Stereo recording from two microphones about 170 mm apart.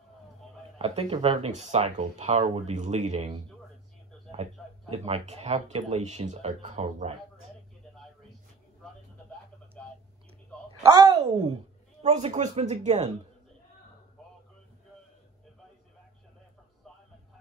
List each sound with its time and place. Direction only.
0.7 s speech: 35° right (ahead or behind)
10.8 s a sound: 20° right (ahead or behind)
12.0 s speech: 40° right (ahead or behind)